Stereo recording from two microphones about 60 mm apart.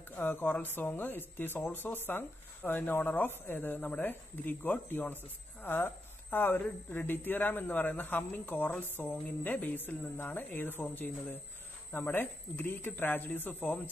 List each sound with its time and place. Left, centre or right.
0.1 s a man's voice: left